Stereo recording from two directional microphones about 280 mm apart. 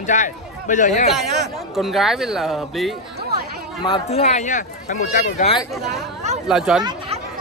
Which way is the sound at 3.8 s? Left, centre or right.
Centre.